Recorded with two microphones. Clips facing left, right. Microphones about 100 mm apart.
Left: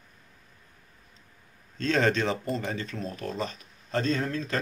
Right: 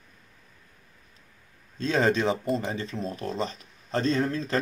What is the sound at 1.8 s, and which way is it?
Speech, 15° right (ahead or behind).